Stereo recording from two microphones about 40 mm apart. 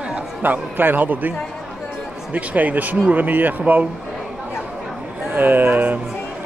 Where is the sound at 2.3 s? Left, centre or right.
Right.